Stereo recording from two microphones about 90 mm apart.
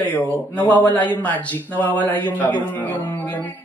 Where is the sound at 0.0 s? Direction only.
20° left (ahead or behind).